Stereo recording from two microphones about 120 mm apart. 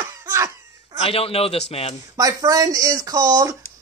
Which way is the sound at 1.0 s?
55° left (ahead or behind).